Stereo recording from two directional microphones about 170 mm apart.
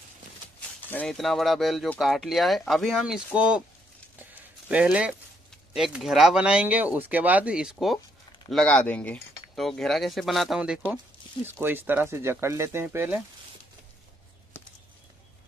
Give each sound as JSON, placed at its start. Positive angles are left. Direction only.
{"t": 0.8, "sound": "speech", "side_deg": 5}
{"t": 4.6, "sound": "speech", "side_deg": -5}